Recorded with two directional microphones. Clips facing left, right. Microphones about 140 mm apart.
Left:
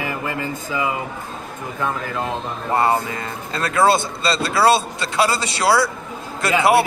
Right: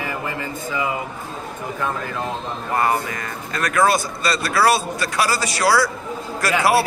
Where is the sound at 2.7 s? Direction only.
25° left (ahead or behind).